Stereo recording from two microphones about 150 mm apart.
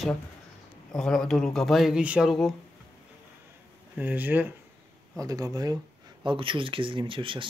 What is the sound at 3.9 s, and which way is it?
Speech, 10° right (ahead or behind).